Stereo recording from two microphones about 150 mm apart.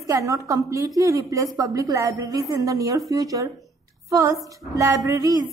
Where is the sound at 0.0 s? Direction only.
20° right (ahead or behind).